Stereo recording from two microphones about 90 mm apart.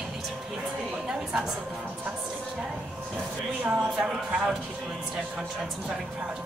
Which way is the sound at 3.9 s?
10° right (ahead or behind).